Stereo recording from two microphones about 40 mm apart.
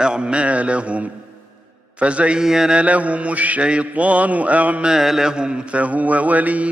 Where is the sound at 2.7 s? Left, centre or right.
Right.